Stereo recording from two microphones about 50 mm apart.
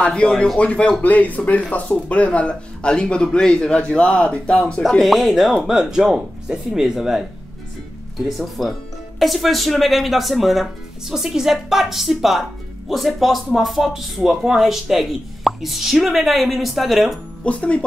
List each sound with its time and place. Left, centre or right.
0.0 s speech: centre
5.0 s speech: centre
8.3 s speech: centre
17.5 s speech: left